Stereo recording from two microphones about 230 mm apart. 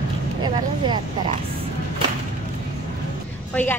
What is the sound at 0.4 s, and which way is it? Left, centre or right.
Speech, right.